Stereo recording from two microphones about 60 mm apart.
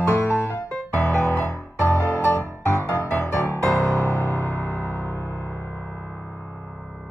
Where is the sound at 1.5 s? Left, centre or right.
Left.